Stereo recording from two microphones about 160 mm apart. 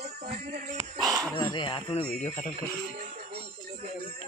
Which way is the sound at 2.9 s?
65° right (ahead or behind).